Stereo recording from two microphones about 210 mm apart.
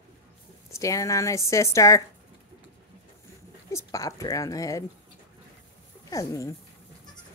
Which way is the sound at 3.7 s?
15° left (ahead or behind).